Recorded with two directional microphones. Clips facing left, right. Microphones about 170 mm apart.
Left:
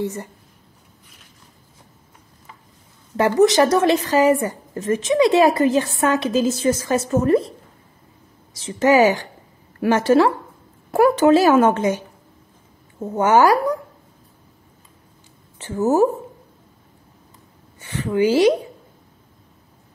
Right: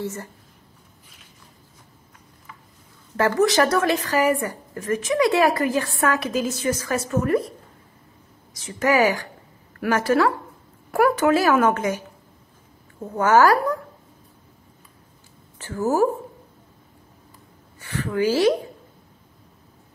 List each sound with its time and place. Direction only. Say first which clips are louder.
0.0 s speech: left 4 dB; 20° left (ahead or behind)
3.2 s a woman's voice: left 4 dB; 20° left (ahead or behind)
8.5 s a woman's voice: left 5 dB; 25° left (ahead or behind)
13.0 s a woman's voice: left 2 dB; 20° left (ahead or behind)
15.5 s a woman's voice: left 4 dB; 20° left (ahead or behind)
17.7 s speech: left 4 dB; 20° left (ahead or behind)